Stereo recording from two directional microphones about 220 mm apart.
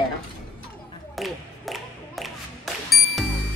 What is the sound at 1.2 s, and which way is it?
Clapping, centre (ahead or behind).